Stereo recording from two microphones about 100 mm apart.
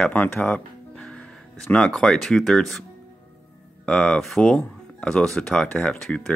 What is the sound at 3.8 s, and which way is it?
Speech, 10° left (ahead or behind).